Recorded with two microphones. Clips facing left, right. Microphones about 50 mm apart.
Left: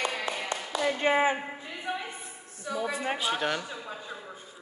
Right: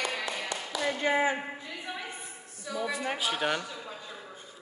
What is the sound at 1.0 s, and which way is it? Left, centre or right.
Speech, left.